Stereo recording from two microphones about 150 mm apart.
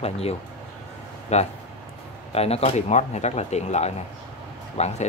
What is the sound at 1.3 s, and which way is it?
Speech, 50° left (ahead or behind).